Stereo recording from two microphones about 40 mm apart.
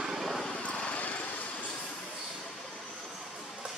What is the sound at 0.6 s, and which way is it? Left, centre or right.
Vehicle, left.